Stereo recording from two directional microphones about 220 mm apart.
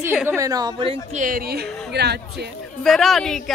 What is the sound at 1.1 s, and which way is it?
A woman's voice, 40° right (ahead or behind).